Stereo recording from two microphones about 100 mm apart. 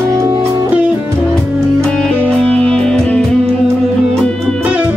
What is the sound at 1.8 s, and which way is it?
Music, 10° left (ahead or behind).